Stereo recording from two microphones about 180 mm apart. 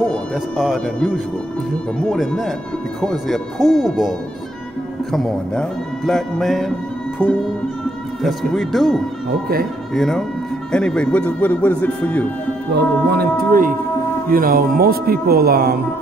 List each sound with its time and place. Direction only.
0.1 s speech: centre (ahead or behind)
5.1 s speech: 5° left (ahead or behind)
8.2 s speech: centre (ahead or behind)
12.7 s speech: 60° right (ahead or behind)